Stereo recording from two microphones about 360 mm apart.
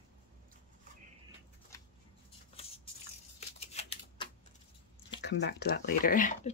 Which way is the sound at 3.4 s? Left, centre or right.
Centre.